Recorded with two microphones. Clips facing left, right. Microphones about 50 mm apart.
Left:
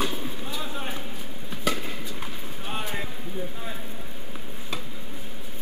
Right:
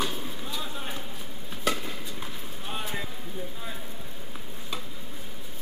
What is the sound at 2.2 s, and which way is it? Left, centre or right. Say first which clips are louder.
Clip-clop: left 2 dB; centre.